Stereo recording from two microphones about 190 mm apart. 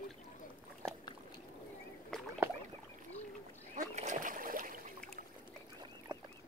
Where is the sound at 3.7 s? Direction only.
40° right (ahead or behind).